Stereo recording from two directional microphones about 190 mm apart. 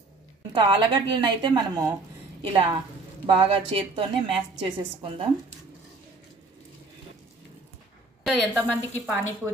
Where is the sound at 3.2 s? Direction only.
25° right (ahead or behind).